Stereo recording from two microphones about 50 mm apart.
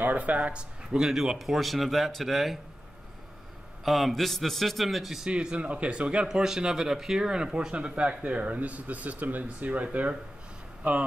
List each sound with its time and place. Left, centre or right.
0.0 s speech: right
1.0 s a man's voice: centre
3.8 s a man's voice: centre
5.3 s speech: centre
6.2 s speech: centre; by 11.1 s right